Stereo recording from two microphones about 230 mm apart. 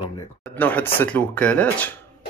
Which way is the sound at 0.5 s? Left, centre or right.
Centre.